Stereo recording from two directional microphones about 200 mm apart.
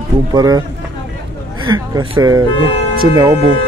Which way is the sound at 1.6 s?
20° right (ahead or behind).